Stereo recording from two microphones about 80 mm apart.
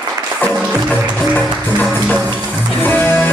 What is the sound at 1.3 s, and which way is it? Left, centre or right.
Music, left.